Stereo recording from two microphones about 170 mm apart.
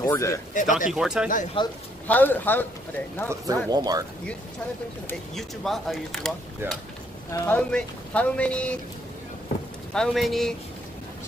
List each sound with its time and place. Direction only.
0.0 s speech: 20° left (ahead or behind)
0.6 s speech: 50° left (ahead or behind)
0.9 s speech: 5° right (ahead or behind)
1.6 s speech: 30° left (ahead or behind)
2.0 s speech: 10° left (ahead or behind)
3.3 s speech: 20° right (ahead or behind)
5.3 s speech: centre (ahead or behind)
7.4 s speech: 10° left (ahead or behind)
9.9 s speech: centre (ahead or behind)